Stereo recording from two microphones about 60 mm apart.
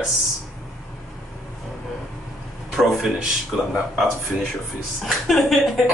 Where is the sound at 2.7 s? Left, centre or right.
Centre.